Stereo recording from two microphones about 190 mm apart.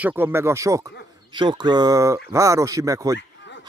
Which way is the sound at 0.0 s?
10° right (ahead or behind).